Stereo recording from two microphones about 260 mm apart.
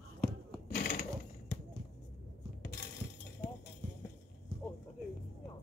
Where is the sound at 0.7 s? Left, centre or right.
Left.